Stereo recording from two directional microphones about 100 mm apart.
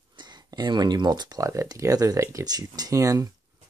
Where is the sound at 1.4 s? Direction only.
30° right (ahead or behind).